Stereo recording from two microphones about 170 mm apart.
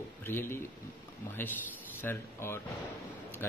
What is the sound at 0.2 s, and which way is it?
Speech, 15° left (ahead or behind).